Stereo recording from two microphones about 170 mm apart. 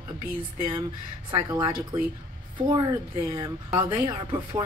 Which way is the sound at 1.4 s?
25° right (ahead or behind).